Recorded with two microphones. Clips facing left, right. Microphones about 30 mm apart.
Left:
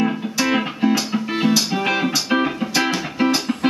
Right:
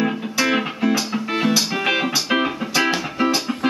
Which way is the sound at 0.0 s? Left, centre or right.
Centre.